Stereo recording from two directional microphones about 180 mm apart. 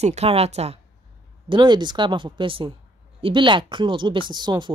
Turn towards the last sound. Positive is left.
turn(degrees=-25)  # may be behind; listen again after turning